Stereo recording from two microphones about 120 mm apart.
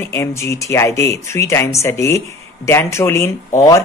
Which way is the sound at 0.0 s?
25° left (ahead or behind).